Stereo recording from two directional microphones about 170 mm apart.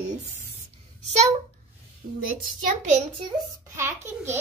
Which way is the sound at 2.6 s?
45° right (ahead or behind).